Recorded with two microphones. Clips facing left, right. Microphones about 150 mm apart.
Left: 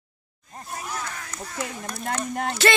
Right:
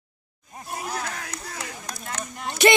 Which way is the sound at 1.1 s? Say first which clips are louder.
Right 3 dB; 65° right (ahead or behind).